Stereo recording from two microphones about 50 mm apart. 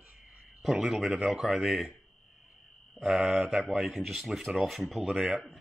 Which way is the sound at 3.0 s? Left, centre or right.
Centre.